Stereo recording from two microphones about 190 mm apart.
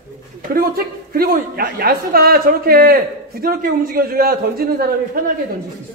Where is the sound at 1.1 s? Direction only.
50° right (ahead or behind).